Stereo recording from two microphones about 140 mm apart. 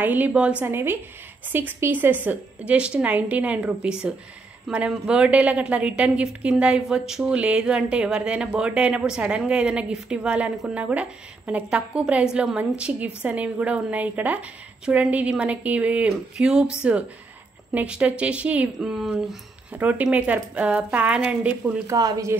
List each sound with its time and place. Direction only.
0.0 s a woman's voice: 10° right (ahead or behind)
21.8 s a woman's voice: 25° right (ahead or behind)